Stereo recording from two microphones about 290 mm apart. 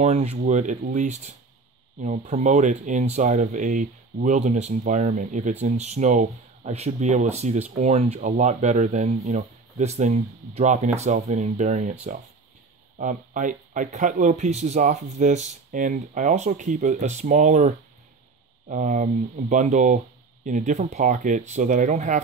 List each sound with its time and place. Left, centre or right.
0.0 s speech: right
12.9 s speech: right